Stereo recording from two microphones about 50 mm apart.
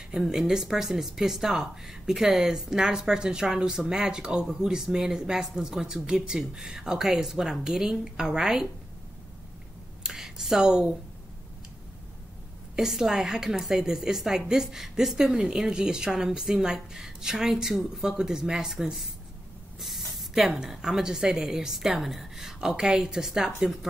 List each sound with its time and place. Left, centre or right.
0.1 s speech: centre
10.0 s speech: centre
12.7 s speech: centre